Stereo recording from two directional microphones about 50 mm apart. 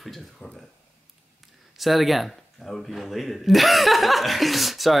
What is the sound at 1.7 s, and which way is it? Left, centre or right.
Speech, centre.